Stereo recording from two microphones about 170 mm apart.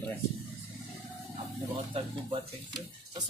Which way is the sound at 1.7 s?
30° right (ahead or behind).